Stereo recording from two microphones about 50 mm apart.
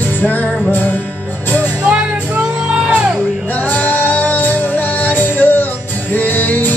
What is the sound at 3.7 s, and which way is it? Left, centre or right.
Music, left.